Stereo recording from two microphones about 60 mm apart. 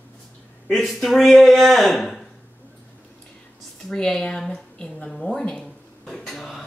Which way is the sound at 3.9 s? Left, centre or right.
Centre.